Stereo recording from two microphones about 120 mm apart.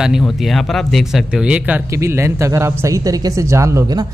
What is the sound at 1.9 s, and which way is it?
Speech, 25° right (ahead or behind).